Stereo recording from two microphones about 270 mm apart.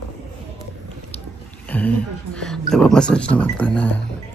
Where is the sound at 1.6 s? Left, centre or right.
Centre.